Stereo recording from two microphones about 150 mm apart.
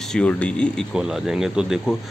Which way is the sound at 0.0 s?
5° left (ahead or behind).